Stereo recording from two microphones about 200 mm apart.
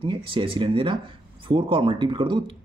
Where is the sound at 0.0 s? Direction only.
25° right (ahead or behind).